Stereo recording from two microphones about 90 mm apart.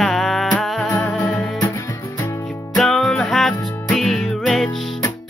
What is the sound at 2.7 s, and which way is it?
Music, 5° left (ahead or behind).